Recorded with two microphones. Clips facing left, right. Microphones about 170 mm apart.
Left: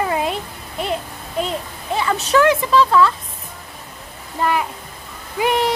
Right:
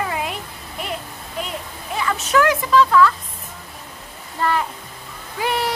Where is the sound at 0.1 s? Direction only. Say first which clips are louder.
Left 5 dB; 30° left (ahead or behind).